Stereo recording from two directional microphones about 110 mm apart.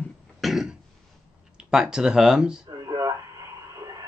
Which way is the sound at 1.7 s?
5° right (ahead or behind).